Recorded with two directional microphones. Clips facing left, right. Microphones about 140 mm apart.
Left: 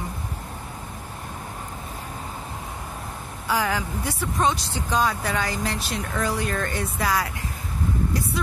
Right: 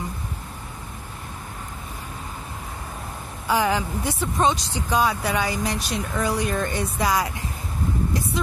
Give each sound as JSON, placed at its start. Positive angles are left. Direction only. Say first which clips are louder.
{"t": 3.4, "sound": "speech", "louder": "right 3 dB", "side_deg": -20}